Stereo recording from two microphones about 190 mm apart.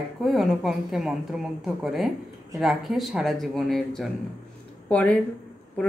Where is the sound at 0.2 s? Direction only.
Centre (ahead or behind).